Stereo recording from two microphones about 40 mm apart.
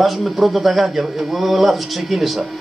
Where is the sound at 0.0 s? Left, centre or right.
Centre.